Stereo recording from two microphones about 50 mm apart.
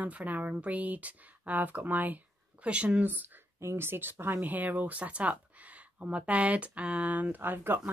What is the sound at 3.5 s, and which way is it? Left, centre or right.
Speech, right.